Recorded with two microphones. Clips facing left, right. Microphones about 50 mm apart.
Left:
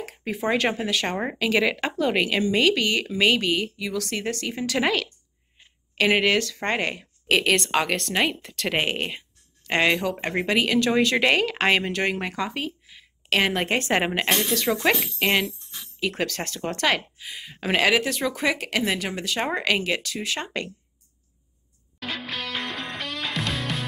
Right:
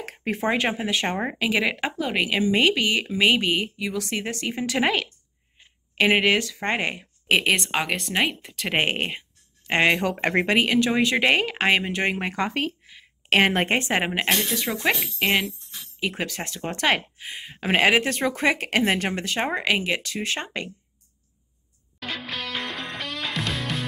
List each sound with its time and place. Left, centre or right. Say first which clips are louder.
0.0 s a sound: right 2 dB; right
0.5 s speech: left 1 dB; centre
1.1 s speech: left 1 dB; centre
8.7 s speech: right 3 dB; right
10.2 s speech: right 4 dB; right
10.5 s speech: left 2 dB; right
12.9 s a sound: right 3 dB; right
13.7 s speech: left 1 dB; centre
14.7 s speech: left 3 dB; centre
15.1 s speech: even; centre; by 19.4 s right
19.5 s speech: left 1 dB; centre
22.0 s music: even; centre